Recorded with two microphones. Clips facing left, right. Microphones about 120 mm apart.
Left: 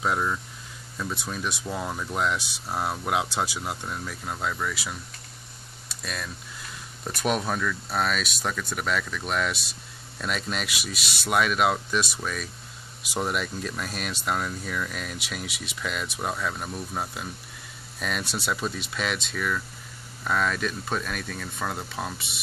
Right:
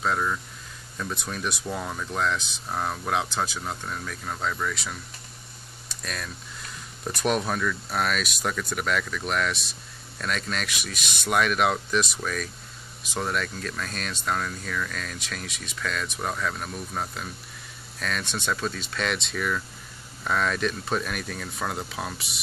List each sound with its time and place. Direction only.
0.0 s speech: 10° left (ahead or behind)
5.9 s a sound: 5° left (ahead or behind)
7.1 s speech: centre (ahead or behind)